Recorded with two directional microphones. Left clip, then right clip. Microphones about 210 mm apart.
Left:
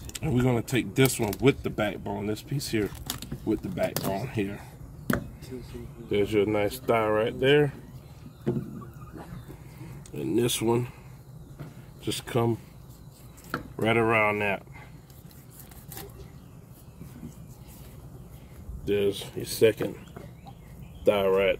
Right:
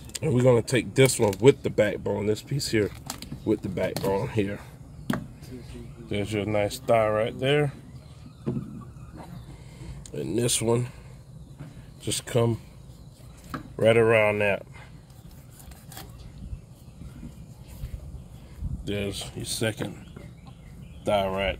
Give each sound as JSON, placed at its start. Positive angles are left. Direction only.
{"t": 0.1, "sound": "speech", "side_deg": -50}
{"t": 6.0, "sound": "speech", "side_deg": -60}
{"t": 10.1, "sound": "speech", "side_deg": -55}
{"t": 12.0, "sound": "speech", "side_deg": -55}
{"t": 13.7, "sound": "speech", "side_deg": -55}
{"t": 18.9, "sound": "speech", "side_deg": -55}
{"t": 21.2, "sound": "speech", "side_deg": -60}